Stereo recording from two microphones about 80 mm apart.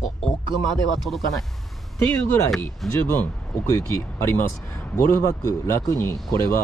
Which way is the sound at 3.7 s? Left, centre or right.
Left.